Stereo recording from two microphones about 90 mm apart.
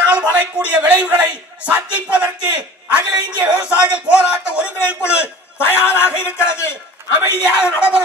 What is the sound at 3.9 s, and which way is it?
A man's voice, 10° right (ahead or behind).